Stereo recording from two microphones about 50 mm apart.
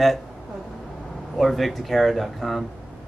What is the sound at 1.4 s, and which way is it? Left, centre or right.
A man's voice, centre.